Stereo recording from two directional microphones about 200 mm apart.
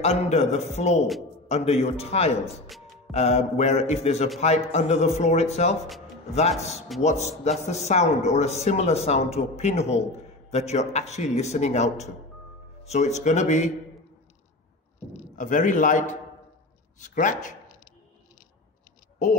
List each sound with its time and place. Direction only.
0.0 s speech: 35° left (ahead or behind)
7.0 s speech: 35° left (ahead or behind)
15.0 s speech: 35° left (ahead or behind)